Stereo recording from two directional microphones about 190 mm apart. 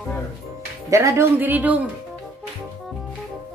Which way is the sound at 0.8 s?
15° right (ahead or behind).